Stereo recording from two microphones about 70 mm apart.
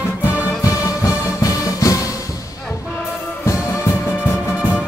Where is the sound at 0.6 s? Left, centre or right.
Left.